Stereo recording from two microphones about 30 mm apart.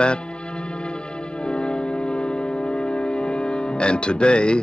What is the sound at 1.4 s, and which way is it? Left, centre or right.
Music, left.